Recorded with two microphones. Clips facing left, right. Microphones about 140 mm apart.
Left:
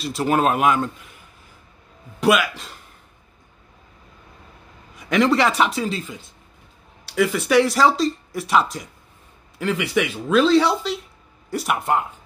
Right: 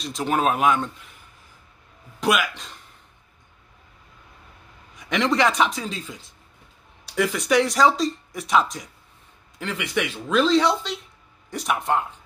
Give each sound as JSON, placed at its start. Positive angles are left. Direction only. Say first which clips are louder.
{"t": 0.0, "sound": "speech", "louder": "left 3 dB", "side_deg": 5}
{"t": 2.1, "sound": "speech", "louder": "left 4 dB", "side_deg": 0}
{"t": 4.9, "sound": "speech", "louder": "left 4 dB", "side_deg": 0}
{"t": 7.2, "sound": "speech", "louder": "left 3 dB", "side_deg": 5}